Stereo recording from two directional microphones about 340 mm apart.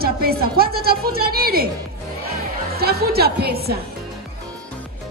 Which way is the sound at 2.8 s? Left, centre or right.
Right.